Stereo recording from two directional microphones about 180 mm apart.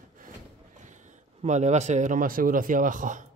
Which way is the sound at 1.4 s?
40° right (ahead or behind).